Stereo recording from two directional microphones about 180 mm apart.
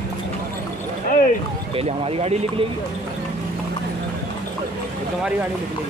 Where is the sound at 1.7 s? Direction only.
35° right (ahead or behind).